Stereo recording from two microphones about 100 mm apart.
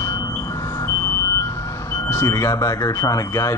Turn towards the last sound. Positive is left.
turn(degrees=30)  # may be behind; listen again after turning